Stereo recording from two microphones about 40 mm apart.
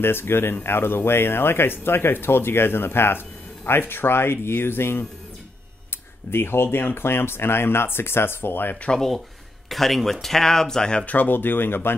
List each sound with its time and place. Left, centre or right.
0.0 s speech: left
6.3 s speech: left
9.7 s speech: centre
11.1 s speech: left